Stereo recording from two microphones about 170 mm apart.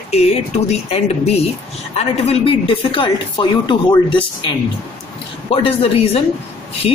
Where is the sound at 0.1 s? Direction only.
40° left (ahead or behind).